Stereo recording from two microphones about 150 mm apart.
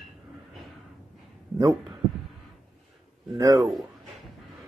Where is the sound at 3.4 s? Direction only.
25° right (ahead or behind).